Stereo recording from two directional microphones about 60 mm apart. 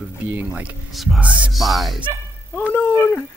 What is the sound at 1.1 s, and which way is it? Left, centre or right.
Speech, right.